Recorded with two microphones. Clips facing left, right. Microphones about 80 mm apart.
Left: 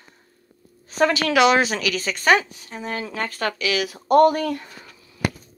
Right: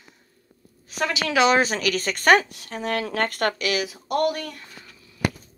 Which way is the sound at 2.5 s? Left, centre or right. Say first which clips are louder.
Right 3 dB; right.